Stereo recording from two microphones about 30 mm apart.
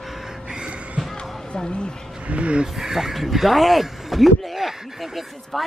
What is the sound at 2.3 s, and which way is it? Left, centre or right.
Speech, right.